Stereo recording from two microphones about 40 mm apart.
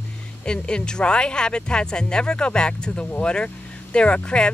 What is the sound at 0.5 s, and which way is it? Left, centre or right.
Speech, left.